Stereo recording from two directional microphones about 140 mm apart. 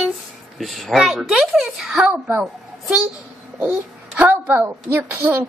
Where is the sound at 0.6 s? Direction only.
Centre (ahead or behind).